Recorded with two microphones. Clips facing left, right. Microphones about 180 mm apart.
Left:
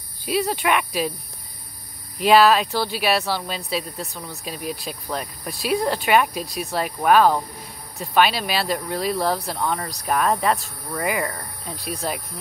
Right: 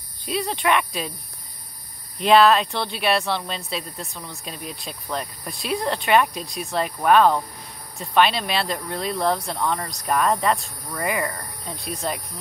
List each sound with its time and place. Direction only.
0.2 s speech: 5° left (ahead or behind)
2.1 s speech: 5° left (ahead or behind)